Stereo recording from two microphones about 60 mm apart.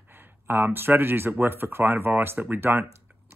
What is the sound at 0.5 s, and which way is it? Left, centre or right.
Speech, right.